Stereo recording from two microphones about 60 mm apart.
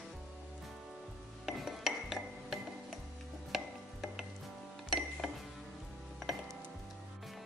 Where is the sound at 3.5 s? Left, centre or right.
Centre.